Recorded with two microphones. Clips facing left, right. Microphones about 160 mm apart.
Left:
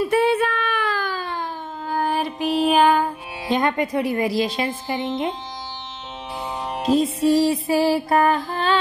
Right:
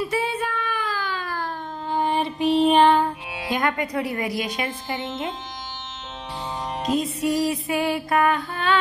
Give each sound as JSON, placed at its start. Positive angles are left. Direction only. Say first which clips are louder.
{"t": 0.0, "sound": "child singing", "louder": "left 7 dB", "side_deg": 60}
{"t": 1.9, "sound": "music", "louder": "even", "side_deg": 5}
{"t": 3.4, "sound": "a woman's voice", "louder": "left 4 dB", "side_deg": 25}
{"t": 6.9, "sound": "music", "louder": "left 6 dB", "side_deg": 30}